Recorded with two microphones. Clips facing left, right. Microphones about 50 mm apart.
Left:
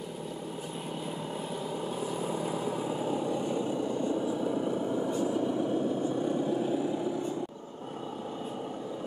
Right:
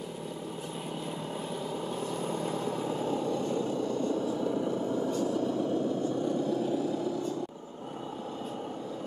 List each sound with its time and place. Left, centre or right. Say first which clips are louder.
2.0 s vehicle: even; centre; by 7.3 s left